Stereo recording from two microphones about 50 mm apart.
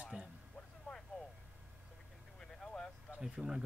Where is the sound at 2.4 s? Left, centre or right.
Centre.